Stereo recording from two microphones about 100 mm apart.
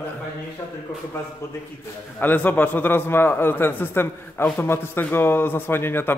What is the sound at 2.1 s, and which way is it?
A man's voice, 20° left (ahead or behind).